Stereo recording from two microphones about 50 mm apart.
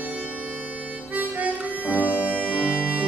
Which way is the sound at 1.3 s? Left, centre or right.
Right.